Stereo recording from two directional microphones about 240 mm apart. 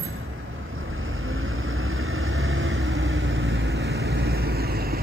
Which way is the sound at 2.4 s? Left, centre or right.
Right.